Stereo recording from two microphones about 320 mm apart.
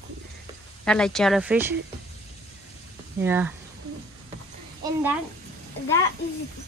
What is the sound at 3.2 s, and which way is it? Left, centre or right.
Speech, centre.